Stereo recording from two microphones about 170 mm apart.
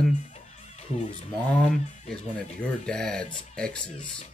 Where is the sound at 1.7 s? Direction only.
5° left (ahead or behind).